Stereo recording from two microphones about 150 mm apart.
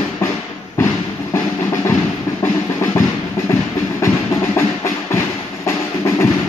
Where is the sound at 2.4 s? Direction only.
20° left (ahead or behind).